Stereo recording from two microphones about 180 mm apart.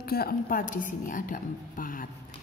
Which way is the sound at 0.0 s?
55° left (ahead or behind).